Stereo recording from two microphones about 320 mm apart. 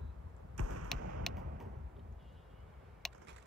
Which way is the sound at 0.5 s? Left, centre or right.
Right.